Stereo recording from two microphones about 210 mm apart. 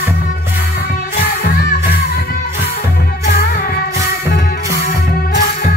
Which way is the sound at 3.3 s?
45° left (ahead or behind).